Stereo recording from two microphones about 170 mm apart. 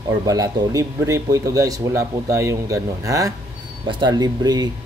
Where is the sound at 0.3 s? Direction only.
20° right (ahead or behind).